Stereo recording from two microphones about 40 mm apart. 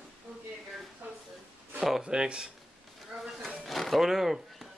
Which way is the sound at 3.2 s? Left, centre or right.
Centre.